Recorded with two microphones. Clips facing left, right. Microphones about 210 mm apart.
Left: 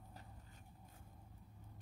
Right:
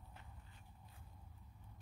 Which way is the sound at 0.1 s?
40° left (ahead or behind).